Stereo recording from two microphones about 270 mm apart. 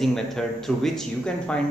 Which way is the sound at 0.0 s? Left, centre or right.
Centre.